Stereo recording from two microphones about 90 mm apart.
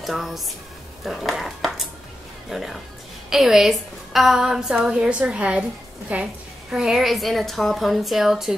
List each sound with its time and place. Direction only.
0.0 s a woman's voice: centre (ahead or behind)